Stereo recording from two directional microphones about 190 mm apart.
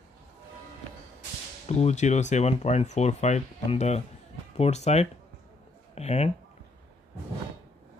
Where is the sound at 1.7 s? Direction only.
35° left (ahead or behind).